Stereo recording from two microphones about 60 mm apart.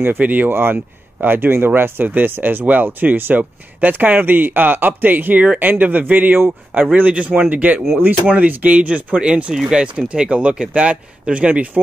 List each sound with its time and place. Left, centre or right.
0.2 s a man's voice: right
0.5 s a man's voice: right